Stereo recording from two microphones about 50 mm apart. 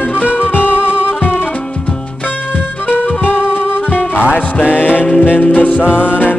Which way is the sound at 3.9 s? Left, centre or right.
Left.